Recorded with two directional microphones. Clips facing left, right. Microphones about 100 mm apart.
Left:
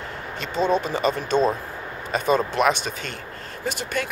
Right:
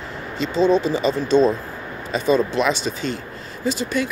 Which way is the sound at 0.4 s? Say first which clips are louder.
Right 5 dB; 50° left (ahead or behind).